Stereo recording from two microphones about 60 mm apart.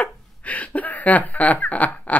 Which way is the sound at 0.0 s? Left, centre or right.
Left.